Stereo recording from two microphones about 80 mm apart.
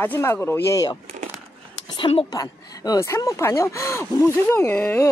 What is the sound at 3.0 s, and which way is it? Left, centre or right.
Speech, left.